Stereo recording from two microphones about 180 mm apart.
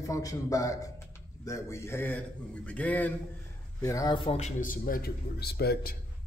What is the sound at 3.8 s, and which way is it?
A man's voice, 20° left (ahead or behind).